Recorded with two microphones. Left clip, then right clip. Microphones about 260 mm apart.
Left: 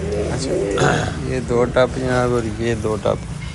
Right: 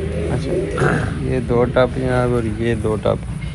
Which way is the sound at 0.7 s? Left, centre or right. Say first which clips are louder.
Left 2 dB; left.